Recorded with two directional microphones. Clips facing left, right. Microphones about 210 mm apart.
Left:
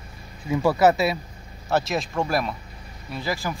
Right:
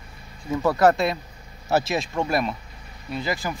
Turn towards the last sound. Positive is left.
turn(degrees=0)  # may be behind; listen again after turning